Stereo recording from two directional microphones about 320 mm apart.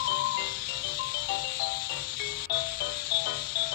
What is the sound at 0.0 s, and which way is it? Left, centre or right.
Music, left.